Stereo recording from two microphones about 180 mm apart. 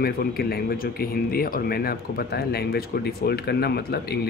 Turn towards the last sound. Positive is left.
turn(degrees=65)  # may be behind; listen again after turning